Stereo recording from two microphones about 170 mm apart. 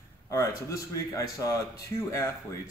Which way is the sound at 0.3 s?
20° left (ahead or behind).